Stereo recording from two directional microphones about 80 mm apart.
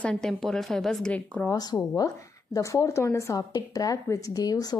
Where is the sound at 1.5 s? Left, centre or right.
Left.